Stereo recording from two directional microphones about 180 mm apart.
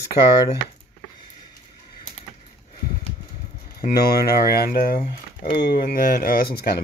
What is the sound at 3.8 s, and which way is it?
Speech, 55° left (ahead or behind).